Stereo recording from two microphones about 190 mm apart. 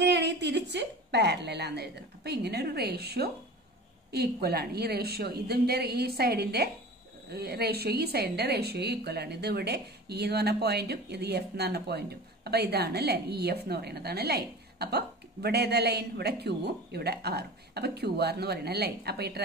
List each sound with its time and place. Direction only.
0.0 s a woman's voice: 65° right (ahead or behind)